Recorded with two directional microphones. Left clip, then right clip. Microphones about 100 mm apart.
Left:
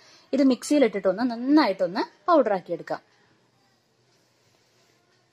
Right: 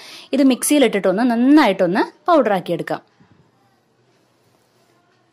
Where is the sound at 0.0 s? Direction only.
60° right (ahead or behind).